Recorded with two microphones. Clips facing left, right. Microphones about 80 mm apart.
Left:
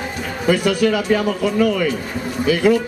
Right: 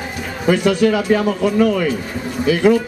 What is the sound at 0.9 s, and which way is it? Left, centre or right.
A man's voice, centre.